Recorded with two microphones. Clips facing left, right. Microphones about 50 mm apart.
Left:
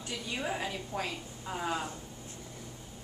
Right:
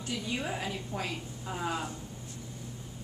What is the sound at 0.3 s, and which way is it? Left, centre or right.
A woman's voice, centre.